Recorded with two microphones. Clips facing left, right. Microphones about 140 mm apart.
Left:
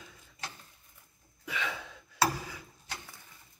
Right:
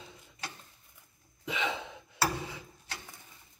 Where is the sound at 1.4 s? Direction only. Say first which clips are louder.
Right 3 dB; 20° right (ahead or behind).